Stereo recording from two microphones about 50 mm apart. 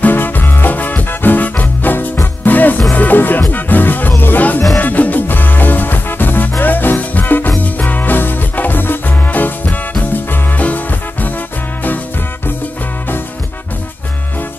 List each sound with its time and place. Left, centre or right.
0.0 s music: left
10.6 s swing music: left